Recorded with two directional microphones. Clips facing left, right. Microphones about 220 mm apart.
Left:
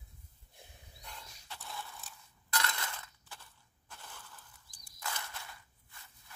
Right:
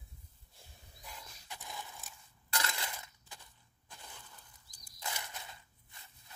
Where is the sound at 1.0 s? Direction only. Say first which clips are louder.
Even; 10° right (ahead or behind).